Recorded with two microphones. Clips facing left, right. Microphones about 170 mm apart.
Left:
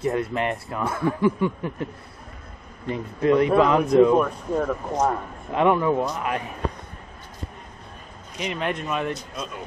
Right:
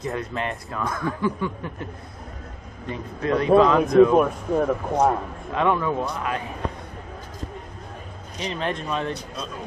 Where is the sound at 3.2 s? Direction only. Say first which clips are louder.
Right 1 dB; 20° left (ahead or behind).